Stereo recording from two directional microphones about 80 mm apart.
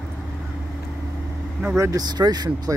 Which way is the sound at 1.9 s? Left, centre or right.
Right.